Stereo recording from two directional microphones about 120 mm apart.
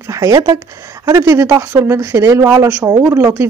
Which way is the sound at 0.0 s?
25° right (ahead or behind).